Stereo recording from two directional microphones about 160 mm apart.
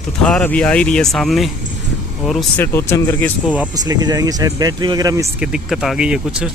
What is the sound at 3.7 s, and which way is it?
Speech, 25° right (ahead or behind).